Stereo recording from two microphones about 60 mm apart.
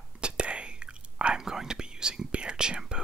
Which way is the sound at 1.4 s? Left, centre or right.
Centre.